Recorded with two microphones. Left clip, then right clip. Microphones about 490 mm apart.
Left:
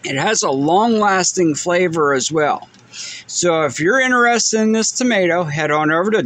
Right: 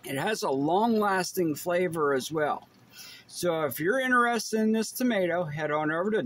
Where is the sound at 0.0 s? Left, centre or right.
Right.